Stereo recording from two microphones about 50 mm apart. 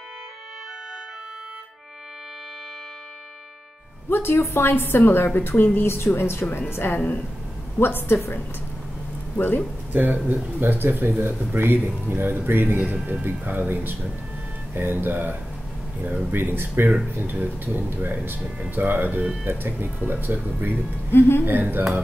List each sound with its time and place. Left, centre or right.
4.1 s a woman's voice: left
5.9 s a woman's voice: left
9.4 s a woman's voice: left
9.9 s speech: right
21.1 s a woman's voice: left
21.5 s speech: right